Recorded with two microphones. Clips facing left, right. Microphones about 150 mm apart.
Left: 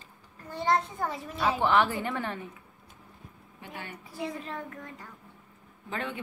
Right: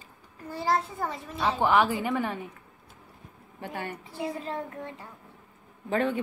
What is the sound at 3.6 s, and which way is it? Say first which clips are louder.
Speech: right 7 dB; 45° right (ahead or behind).